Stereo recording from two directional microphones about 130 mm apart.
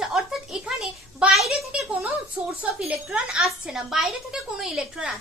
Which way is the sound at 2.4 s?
15° right (ahead or behind).